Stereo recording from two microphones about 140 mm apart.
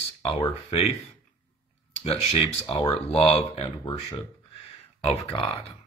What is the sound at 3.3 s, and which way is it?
Speech, 40° left (ahead or behind).